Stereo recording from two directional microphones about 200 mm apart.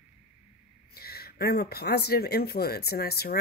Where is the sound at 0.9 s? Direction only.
50° left (ahead or behind).